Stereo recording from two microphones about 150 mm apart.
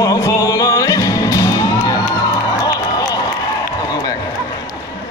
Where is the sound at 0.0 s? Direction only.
25° left (ahead or behind).